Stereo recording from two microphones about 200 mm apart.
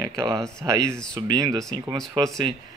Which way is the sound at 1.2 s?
20° right (ahead or behind).